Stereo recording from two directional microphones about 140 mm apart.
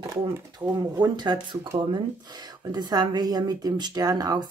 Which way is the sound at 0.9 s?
30° right (ahead or behind).